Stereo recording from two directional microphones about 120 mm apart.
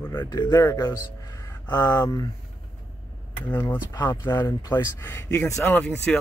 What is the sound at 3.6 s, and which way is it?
Speech, 20° left (ahead or behind).